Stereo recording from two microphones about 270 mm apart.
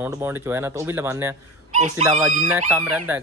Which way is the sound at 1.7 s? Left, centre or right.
Right.